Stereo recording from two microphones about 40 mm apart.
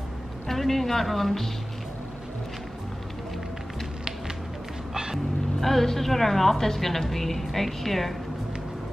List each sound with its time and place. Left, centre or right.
0.5 s speech: centre
5.6 s a woman's voice: centre